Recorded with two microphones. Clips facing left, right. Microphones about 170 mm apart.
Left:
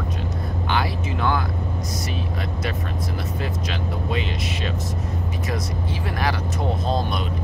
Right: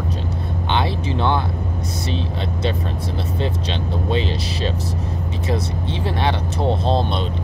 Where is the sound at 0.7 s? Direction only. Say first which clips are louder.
Right 3 dB; 25° right (ahead or behind).